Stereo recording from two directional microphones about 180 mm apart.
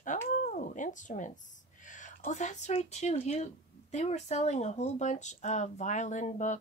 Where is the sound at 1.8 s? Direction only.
45° left (ahead or behind).